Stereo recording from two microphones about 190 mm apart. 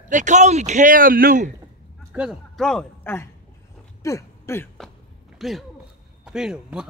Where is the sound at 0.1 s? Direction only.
40° right (ahead or behind).